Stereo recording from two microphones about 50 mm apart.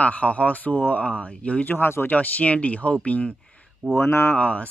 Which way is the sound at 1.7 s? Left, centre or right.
Left.